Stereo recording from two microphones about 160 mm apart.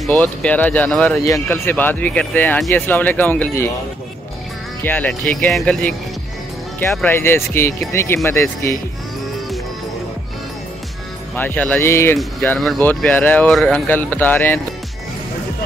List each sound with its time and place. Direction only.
0.0 s speech: 5° left (ahead or behind)
1.2 s speech: 15° left (ahead or behind)
4.8 s speech: 10° left (ahead or behind)
11.3 s speech: 10° left (ahead or behind)
12.2 s speech: 5° left (ahead or behind)